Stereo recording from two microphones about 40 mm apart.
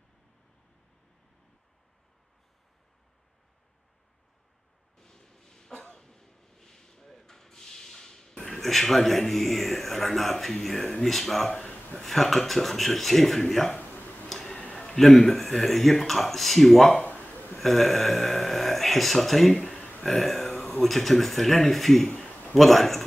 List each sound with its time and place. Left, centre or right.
4.9 s a sound: centre
5.9 s rub: centre
8.5 s speech: centre
14.3 s tick-tock: centre
14.6 s a sound: left
15.0 s speech: centre
17.0 s a sound: left
17.6 s speech: centre
19.5 s speech: centre
20.1 s speech: centre
22.0 s a man's voice: left
22.5 s speech: centre